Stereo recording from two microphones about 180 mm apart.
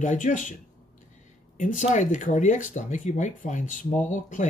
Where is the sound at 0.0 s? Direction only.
45° left (ahead or behind).